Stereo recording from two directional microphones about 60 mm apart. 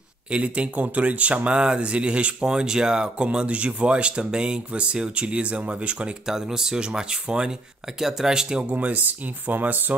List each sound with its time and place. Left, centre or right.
0.3 s speech: centre
6.2 s speech: centre
8.7 s speech: right